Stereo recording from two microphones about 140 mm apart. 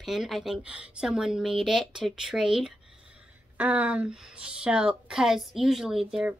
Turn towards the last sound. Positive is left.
turn(degrees=-5)  # may be behind; listen again after turning